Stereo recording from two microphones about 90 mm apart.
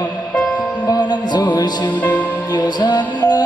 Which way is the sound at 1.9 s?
20° left (ahead or behind).